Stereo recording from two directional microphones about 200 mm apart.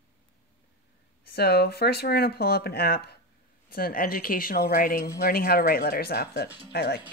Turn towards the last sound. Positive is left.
turn(degrees=55)  # may be behind; listen again after turning